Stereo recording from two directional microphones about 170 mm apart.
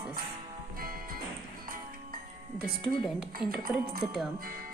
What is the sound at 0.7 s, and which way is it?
Music, 60° right (ahead or behind).